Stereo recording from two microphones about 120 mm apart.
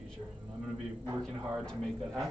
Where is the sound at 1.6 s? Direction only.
5° left (ahead or behind).